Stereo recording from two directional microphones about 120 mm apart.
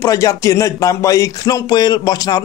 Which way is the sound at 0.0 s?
25° left (ahead or behind).